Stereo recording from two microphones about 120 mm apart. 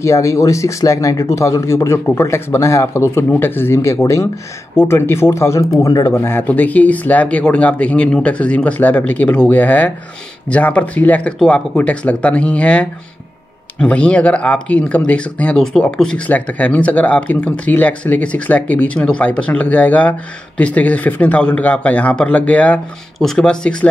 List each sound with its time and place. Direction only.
0.0 s speech: 25° left (ahead or behind); by 23.9 s 5° left (ahead or behind)